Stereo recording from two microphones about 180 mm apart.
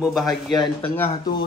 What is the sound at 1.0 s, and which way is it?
Speech, 25° left (ahead or behind).